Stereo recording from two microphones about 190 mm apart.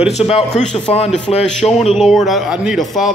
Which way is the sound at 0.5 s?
5° left (ahead or behind).